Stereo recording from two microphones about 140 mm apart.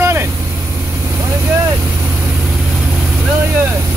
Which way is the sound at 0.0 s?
20° right (ahead or behind).